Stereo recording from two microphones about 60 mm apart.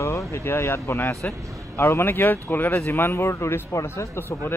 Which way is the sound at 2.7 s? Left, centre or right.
Left.